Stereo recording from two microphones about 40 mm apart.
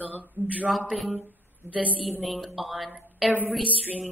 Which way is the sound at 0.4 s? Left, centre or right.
Right.